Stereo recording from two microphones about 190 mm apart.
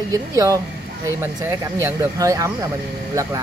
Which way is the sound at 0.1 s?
15° right (ahead or behind).